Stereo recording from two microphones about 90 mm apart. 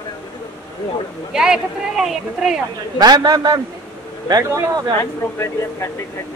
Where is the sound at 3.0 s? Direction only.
50° right (ahead or behind).